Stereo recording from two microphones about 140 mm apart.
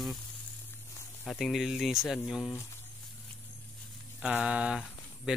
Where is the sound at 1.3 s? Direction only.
Centre (ahead or behind).